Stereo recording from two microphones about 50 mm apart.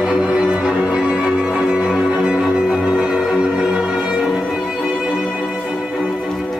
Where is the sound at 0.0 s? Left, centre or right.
Centre.